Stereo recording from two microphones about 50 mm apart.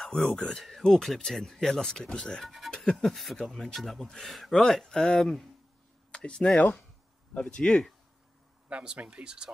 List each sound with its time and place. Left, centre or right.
0.0 s speech: centre
8.6 s speech: right